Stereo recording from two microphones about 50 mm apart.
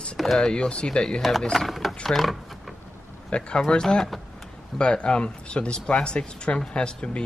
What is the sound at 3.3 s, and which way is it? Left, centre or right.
Speech, left.